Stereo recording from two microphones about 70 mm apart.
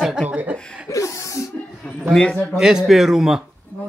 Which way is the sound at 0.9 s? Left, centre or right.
Left.